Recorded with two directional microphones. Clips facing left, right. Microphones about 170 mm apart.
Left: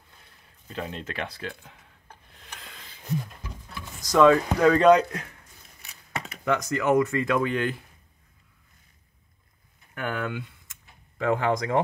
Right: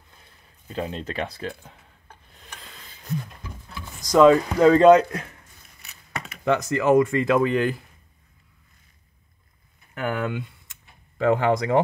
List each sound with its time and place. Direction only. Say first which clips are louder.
0.7 s speech: right 4 dB; 30° right (ahead or behind)
4.0 s speech: right 3 dB; 20° right (ahead or behind)
6.4 s speech: right 4 dB; 25° right (ahead or behind)
9.9 s speech: right 4 dB; 15° right (ahead or behind)
11.1 s speech: right 4 dB; 30° right (ahead or behind)